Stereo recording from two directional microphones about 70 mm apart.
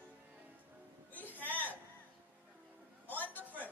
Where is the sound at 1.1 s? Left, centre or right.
Left.